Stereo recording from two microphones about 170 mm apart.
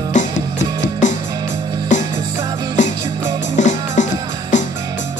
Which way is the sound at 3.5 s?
45° left (ahead or behind).